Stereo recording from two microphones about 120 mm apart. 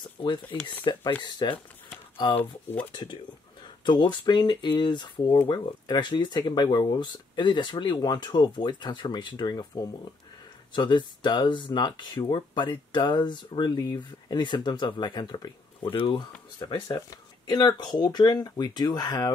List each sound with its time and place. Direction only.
0.2 s speech: 40° left (ahead or behind)
2.3 s speech: 15° left (ahead or behind)
2.9 s speech: 40° left (ahead or behind)